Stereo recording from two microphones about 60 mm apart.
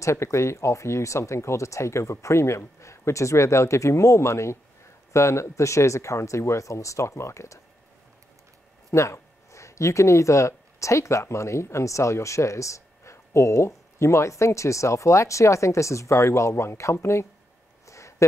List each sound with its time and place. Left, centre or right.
0.0 s speech: left
8.9 s speech: left
17.8 s a sound: left